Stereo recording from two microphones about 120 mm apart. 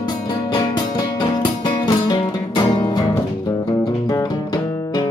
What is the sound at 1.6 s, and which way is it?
Music, 35° left (ahead or behind).